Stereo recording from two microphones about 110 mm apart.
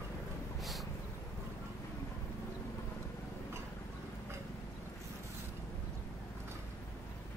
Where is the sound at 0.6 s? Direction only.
Centre (ahead or behind).